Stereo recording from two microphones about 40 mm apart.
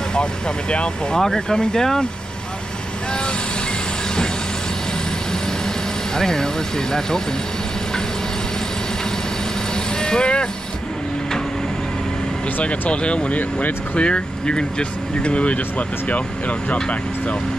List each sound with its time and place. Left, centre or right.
0.1 s speech: left
6.1 s speech: centre
9.9 s speech: centre
12.9 s speech: left
13.4 s speech: left
13.9 s speech: left